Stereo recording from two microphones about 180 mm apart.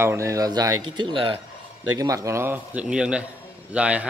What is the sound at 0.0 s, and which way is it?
A man's voice, 15° right (ahead or behind).